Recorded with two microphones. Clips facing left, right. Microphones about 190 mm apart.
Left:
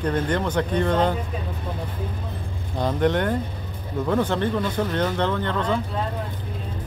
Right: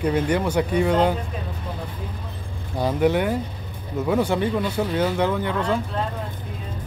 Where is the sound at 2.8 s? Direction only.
10° right (ahead or behind).